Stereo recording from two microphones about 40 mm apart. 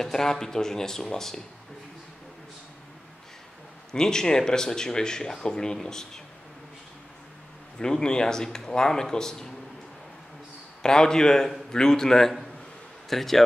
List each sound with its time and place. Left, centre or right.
0.0 s speech: centre
3.9 s speech: centre
7.8 s speech: centre
10.8 s speech: centre